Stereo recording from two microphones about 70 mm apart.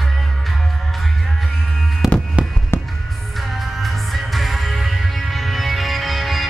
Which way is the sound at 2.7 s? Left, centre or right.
Left.